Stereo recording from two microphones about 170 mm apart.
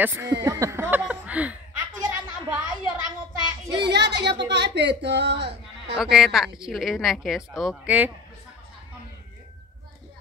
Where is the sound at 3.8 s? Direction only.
80° right.